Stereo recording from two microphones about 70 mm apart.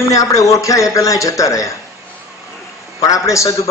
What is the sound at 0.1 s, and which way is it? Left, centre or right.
A man's voice, left.